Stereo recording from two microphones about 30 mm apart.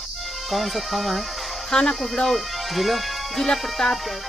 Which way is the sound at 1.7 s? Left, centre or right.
Centre.